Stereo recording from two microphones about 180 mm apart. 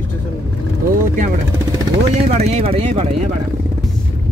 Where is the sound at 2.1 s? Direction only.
35° right (ahead or behind).